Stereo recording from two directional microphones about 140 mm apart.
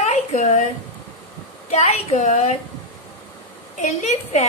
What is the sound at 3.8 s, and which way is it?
Speech, 55° left (ahead or behind).